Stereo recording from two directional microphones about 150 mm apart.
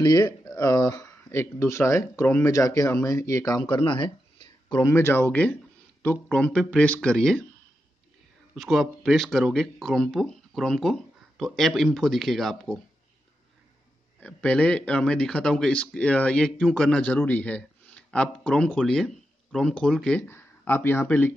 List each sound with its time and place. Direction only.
0.0 s speech: 25° left (ahead or behind); by 7.4 s 5° left (ahead or behind)
8.5 s speech: centre (ahead or behind)
14.2 s speech: 5° left (ahead or behind)